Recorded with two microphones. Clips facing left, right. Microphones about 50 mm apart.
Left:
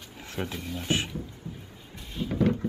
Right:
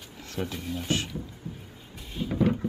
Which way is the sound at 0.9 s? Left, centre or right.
Left.